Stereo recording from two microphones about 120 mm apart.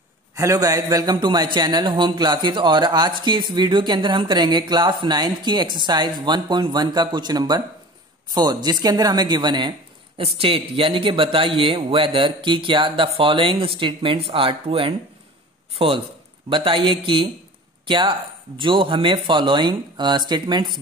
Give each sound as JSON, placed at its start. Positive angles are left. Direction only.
{"t": 0.4, "sound": "a man's voice", "side_deg": -30}
{"t": 10.2, "sound": "a man's voice", "side_deg": -50}